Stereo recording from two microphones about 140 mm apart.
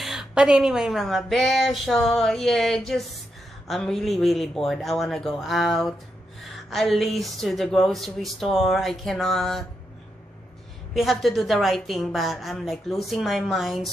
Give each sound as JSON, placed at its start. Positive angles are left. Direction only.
{"t": 0.0, "sound": "speech", "side_deg": -5}
{"t": 10.9, "sound": "speech", "side_deg": 0}